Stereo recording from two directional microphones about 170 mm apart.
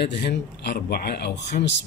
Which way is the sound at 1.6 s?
90° left.